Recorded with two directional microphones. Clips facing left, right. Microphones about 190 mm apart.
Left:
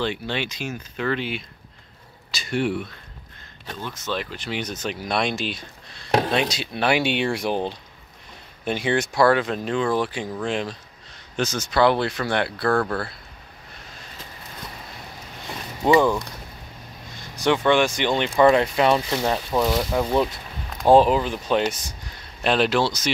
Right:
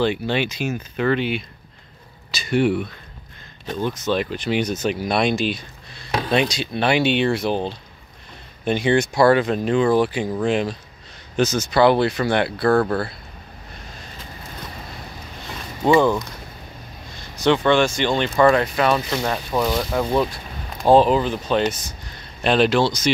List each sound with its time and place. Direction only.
0.0 s speech: 10° right (ahead or behind)
3.6 s speech: 15° right (ahead or behind)
12.7 s speech: 20° right (ahead or behind)
16.0 s speech: centre (ahead or behind)
17.4 s speech: 15° left (ahead or behind)